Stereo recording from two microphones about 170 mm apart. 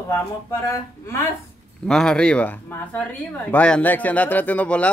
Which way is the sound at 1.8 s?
5° left (ahead or behind).